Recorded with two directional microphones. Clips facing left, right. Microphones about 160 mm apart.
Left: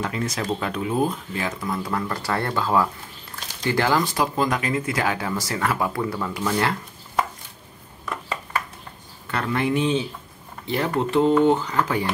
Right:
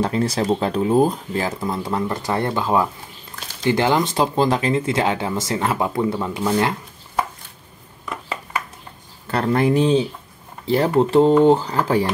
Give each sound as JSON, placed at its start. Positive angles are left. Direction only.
{"t": 0.0, "sound": "speech", "side_deg": -35}
{"t": 8.0, "sound": "a sound", "side_deg": -10}
{"t": 9.3, "sound": "speech", "side_deg": -35}